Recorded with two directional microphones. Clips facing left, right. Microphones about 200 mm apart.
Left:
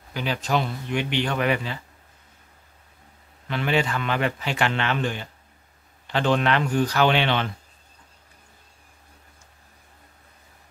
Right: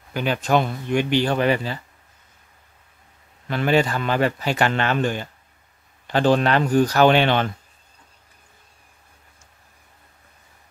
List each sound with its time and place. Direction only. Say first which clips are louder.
0.1 s speech: right 5 dB; 55° right (ahead or behind); by 1.8 s 35° right (ahead or behind)
3.4 s a man's voice: right 4 dB; 40° right (ahead or behind)